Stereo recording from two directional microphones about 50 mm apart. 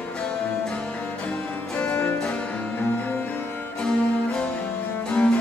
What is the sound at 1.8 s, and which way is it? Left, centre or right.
Music, left.